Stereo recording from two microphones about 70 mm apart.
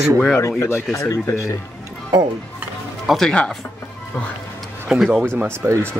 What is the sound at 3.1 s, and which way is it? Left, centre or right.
Speech, centre.